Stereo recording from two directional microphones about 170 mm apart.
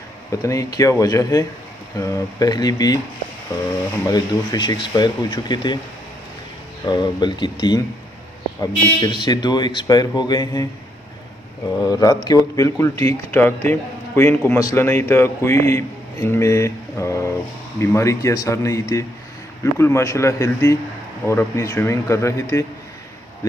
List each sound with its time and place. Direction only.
0.3 s speech: 20° left (ahead or behind)
4.1 s speech: 25° left (ahead or behind)
6.9 s speech: 25° left (ahead or behind)
11.8 s a man's voice: 20° left (ahead or behind)